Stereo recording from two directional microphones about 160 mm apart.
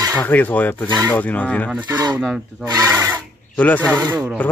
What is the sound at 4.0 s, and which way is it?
Speech, 20° right (ahead or behind).